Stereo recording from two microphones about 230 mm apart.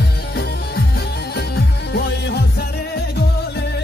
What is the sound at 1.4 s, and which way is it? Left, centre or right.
Music, left.